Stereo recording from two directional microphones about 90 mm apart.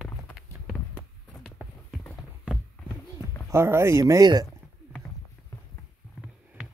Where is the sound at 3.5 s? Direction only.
30° right (ahead or behind).